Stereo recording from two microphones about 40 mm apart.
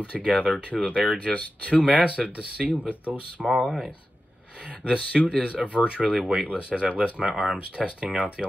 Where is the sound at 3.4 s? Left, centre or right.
Centre.